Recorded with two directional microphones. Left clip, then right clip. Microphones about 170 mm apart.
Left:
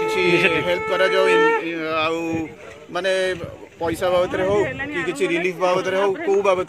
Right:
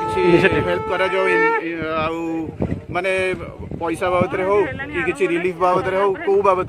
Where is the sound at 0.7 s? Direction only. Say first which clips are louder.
Left 1 dB; 5° right (ahead or behind).